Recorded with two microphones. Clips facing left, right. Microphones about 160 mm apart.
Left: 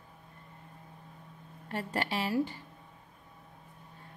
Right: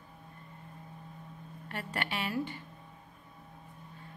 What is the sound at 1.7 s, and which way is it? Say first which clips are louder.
Speech: left 4 dB; 35° left (ahead or behind).